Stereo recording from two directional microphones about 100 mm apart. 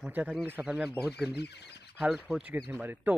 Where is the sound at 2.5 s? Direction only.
20° right (ahead or behind).